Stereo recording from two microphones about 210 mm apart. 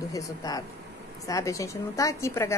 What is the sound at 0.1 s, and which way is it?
A woman's voice, 15° left (ahead or behind).